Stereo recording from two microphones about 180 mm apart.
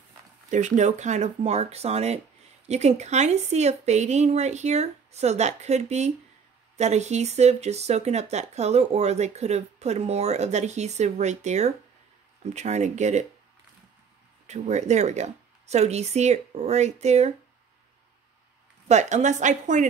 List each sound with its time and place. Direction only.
0.5 s speech: 40° right (ahead or behind)
14.5 s speech: 40° right (ahead or behind)
18.9 s a woman's voice: 40° right (ahead or behind)